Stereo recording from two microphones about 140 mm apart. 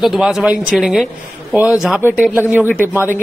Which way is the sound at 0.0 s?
Centre (ahead or behind).